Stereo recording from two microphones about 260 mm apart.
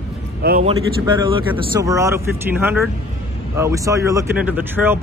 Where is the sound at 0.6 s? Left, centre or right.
Centre.